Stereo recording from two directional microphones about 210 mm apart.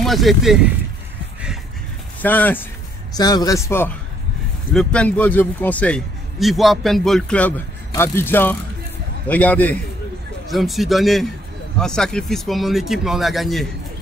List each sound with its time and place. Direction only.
0.0 s speech: centre (ahead or behind)
2.2 s a man's voice: 10° left (ahead or behind)